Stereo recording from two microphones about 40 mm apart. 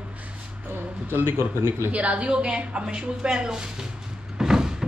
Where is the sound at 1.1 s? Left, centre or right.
Right.